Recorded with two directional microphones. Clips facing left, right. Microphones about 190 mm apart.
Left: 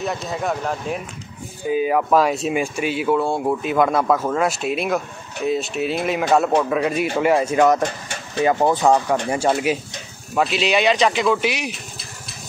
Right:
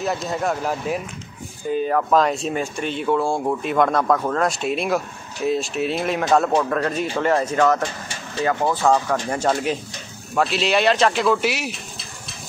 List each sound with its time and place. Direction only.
0.0 s speech: centre (ahead or behind)